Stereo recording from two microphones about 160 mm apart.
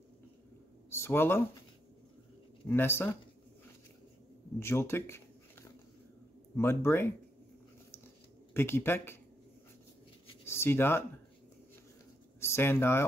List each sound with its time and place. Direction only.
0.8 s speech: 15° left (ahead or behind)
2.7 s speech: 15° left (ahead or behind)
4.6 s a sound: 15° left (ahead or behind)
6.5 s speech: 15° left (ahead or behind)
8.5 s speech: 15° left (ahead or behind)
10.4 s speech: 15° left (ahead or behind)
12.4 s speech: 15° left (ahead or behind)